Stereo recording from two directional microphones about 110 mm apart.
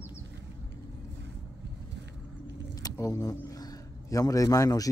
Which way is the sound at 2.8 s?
35° left (ahead or behind).